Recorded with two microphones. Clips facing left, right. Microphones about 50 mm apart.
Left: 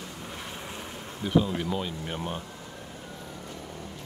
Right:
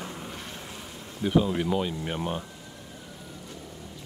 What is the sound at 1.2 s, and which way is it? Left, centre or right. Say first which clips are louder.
Speech: right 1 dB; centre.